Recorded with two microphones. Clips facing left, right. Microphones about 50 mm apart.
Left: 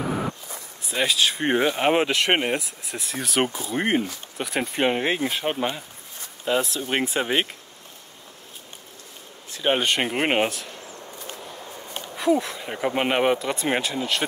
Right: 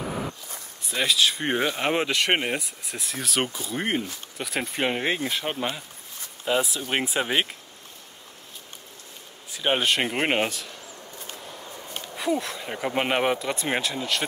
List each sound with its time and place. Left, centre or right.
0.8 s speech: centre
9.5 s speech: centre
11.1 s a sound: left
11.4 s speech: centre